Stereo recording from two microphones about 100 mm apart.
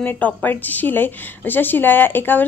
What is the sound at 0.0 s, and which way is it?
A woman's voice, 20° left (ahead or behind).